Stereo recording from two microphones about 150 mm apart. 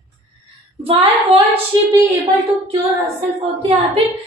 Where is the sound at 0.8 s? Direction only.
40° right (ahead or behind).